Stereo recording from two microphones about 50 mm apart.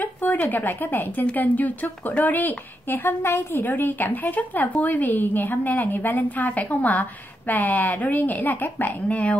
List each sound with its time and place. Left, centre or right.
0.0 s a woman's voice: left